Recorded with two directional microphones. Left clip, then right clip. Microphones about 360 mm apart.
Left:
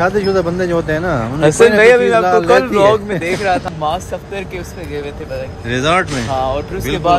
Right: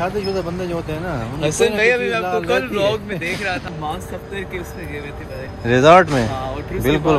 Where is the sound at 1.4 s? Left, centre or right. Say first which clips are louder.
Left 8 dB; left.